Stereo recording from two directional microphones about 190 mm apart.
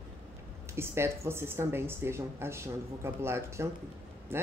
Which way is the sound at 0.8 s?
15° right (ahead or behind).